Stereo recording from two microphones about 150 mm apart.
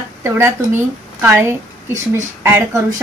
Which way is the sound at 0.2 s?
15° right (ahead or behind).